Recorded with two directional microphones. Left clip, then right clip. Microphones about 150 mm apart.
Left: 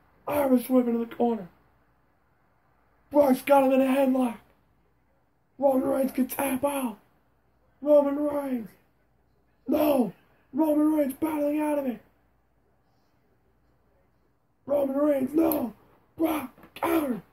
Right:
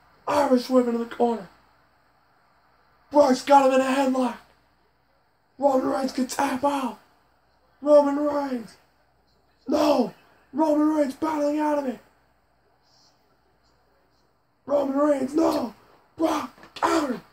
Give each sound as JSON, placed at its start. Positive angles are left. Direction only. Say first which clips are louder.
{"t": 0.2, "sound": "speech", "louder": "right 4 dB", "side_deg": 0}
{"t": 3.1, "sound": "speech", "louder": "right 3 dB", "side_deg": 0}
{"t": 5.6, "sound": "speech", "louder": "right 2 dB", "side_deg": 0}
{"t": 9.7, "sound": "speech", "louder": "right 3 dB", "side_deg": 0}
{"t": 14.6, "sound": "speech", "louder": "right 3 dB", "side_deg": 0}
{"t": 16.2, "sound": "throat clearing", "louder": "right 3 dB", "side_deg": 0}